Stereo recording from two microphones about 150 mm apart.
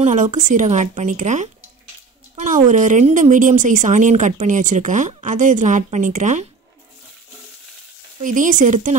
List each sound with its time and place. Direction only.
0.0 s speech: 55° right (ahead or behind)
2.3 s a sound: 60° right (ahead or behind)
2.7 s speech: 55° right (ahead or behind)
8.2 s speech: 60° right (ahead or behind)